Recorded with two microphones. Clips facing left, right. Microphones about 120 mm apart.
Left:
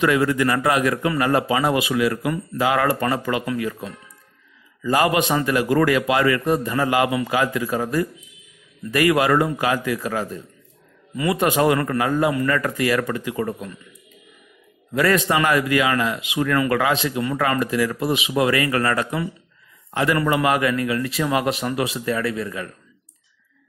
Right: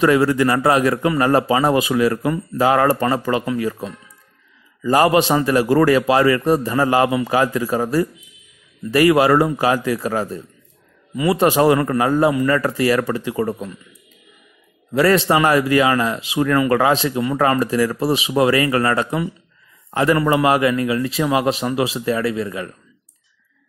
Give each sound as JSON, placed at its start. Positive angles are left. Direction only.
{"t": 0.0, "sound": "a man's voice", "side_deg": -30}
{"t": 14.9, "sound": "a man's voice", "side_deg": -30}